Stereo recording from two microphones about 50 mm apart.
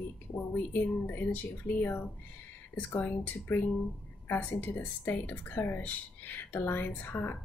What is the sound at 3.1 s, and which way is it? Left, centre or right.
Speech, left.